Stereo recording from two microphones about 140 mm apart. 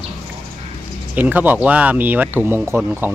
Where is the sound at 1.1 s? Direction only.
10° right (ahead or behind).